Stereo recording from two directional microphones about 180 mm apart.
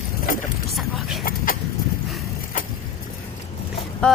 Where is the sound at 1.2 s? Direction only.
50° left (ahead or behind).